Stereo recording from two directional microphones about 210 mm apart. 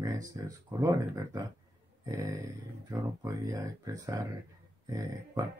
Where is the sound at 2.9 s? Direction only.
15° right (ahead or behind).